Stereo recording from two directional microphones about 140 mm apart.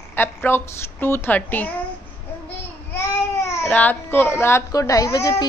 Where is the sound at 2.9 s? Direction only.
20° left (ahead or behind).